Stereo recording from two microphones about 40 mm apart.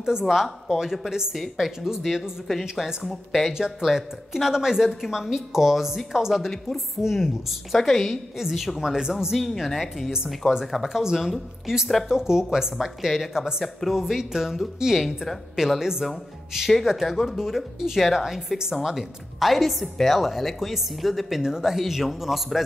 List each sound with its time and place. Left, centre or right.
0.2 s a woman's voice: centre
1.3 s a woman's voice: centre
3.0 s a woman's voice: centre
3.5 s a woman's voice: centre
21.4 s a woman's voice: centre